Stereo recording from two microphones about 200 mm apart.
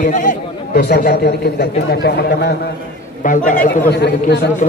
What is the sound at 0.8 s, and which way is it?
Speech, 55° left (ahead or behind).